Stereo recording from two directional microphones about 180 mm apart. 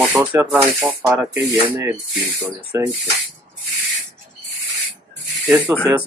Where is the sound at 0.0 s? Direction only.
10° right (ahead or behind).